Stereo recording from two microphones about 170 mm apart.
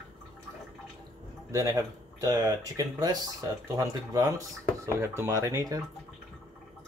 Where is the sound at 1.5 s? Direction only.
20° right (ahead or behind).